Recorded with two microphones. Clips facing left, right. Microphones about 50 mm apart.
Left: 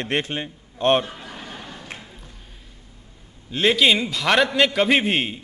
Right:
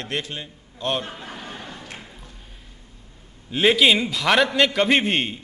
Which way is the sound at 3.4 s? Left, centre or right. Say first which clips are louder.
Right 1 dB; centre.